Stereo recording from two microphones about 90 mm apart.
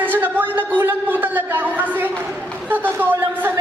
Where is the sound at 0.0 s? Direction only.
20° right (ahead or behind).